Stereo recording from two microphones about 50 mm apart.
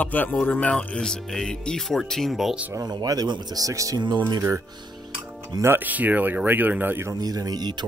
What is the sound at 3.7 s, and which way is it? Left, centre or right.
Speech, right.